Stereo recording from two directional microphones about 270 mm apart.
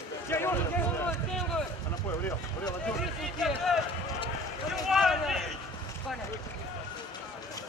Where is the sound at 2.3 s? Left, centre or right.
Centre.